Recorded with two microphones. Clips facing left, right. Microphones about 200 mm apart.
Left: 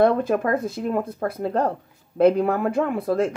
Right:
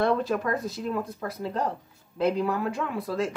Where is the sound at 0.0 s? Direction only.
55° left (ahead or behind).